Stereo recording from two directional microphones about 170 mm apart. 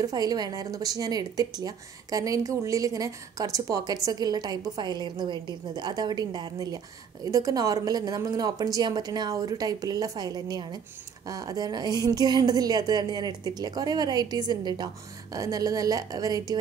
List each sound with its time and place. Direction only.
0.0 s a woman's voice: 20° right (ahead or behind)